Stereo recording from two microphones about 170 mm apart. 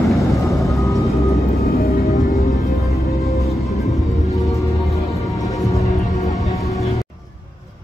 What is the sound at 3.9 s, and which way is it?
Music, centre (ahead or behind).